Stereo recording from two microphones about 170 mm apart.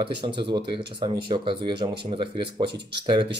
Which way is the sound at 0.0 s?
30° right (ahead or behind).